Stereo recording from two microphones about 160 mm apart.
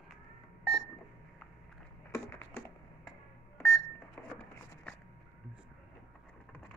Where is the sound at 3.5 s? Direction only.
15° left (ahead or behind).